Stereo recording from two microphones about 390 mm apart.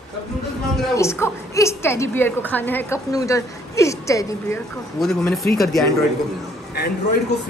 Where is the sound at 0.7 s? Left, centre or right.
Centre.